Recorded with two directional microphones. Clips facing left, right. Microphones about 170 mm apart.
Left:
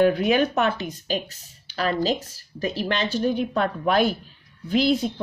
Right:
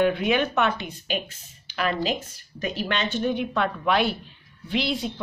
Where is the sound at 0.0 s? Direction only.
40° left (ahead or behind).